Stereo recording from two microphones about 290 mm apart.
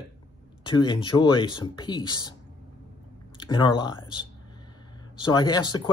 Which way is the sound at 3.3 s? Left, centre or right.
Centre.